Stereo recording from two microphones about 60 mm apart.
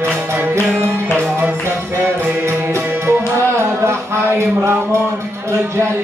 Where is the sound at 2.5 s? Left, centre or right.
Right.